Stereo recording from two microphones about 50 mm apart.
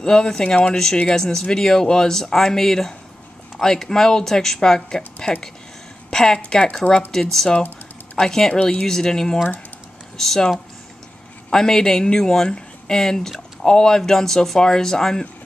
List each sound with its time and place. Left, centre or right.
0.0 s speech: centre